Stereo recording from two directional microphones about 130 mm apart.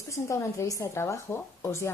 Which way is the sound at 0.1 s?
25° left (ahead or behind).